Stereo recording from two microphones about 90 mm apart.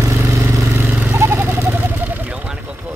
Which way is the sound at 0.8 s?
30° right (ahead or behind).